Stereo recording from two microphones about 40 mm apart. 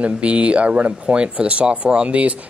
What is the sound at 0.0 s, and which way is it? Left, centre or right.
Speech, right.